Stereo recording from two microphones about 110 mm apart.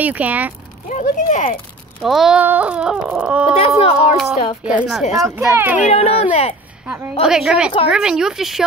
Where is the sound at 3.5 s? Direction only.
70° left (ahead or behind).